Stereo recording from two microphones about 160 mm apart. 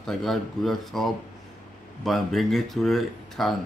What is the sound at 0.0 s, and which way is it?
Speech, centre (ahead or behind).